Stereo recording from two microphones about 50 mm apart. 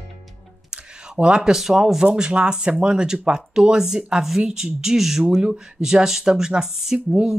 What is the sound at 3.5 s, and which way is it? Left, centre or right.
Speech, centre.